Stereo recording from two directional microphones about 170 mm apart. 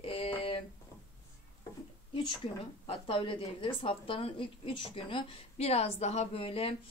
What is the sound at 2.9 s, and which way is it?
A woman's voice, 30° left (ahead or behind).